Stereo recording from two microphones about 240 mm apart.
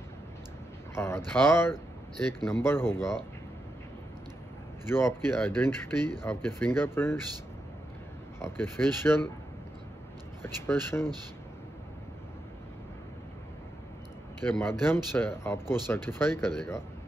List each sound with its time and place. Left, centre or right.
0.9 s speech: centre
4.9 s speech: centre
8.4 s speech: centre
10.4 s speech: centre
14.5 s speech: centre